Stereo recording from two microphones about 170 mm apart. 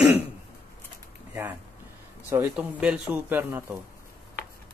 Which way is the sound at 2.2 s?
10° right (ahead or behind).